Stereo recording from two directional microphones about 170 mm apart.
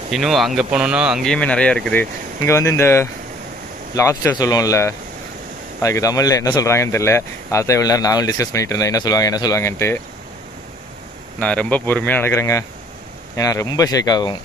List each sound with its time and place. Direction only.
0.1 s speech: centre (ahead or behind); by 9.9 s 15° left (ahead or behind)
11.3 s speech: 5° left (ahead or behind); by 14.3 s 25° left (ahead or behind)